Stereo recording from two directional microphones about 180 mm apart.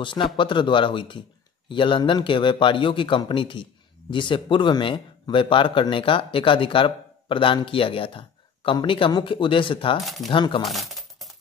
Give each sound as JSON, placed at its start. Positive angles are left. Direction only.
{"t": 0.0, "sound": "a man's voice", "side_deg": 25}
{"t": 10.0, "sound": "speech", "side_deg": 0}
{"t": 10.3, "sound": "a man's voice", "side_deg": 30}
{"t": 10.6, "sound": "a sound", "side_deg": 0}